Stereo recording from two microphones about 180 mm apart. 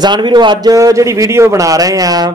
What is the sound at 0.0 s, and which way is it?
A man's voice, 25° right (ahead or behind).